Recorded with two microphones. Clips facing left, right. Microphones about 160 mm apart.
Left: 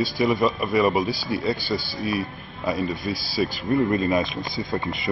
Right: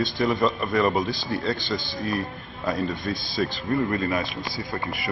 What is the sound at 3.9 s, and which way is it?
Speech, 20° left (ahead or behind).